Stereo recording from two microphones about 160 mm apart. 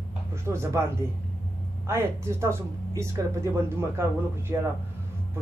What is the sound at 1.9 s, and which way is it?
Speech, 20° right (ahead or behind).